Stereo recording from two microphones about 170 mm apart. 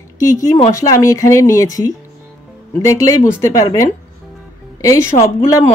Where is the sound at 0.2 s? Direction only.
20° left (ahead or behind).